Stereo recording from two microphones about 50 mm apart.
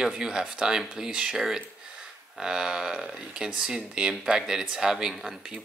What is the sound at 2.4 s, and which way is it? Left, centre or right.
Speech, centre.